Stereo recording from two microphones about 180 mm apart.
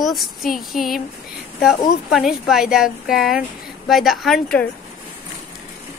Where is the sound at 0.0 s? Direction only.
Centre (ahead or behind).